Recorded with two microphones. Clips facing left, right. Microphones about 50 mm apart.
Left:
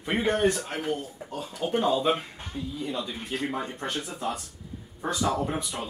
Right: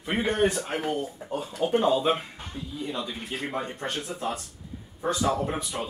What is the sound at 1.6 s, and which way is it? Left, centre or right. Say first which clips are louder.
Speech: right 2 dB; centre.